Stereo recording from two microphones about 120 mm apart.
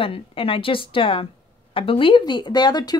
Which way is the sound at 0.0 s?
50° left (ahead or behind).